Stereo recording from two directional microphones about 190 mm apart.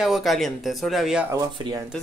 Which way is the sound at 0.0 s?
Centre (ahead or behind).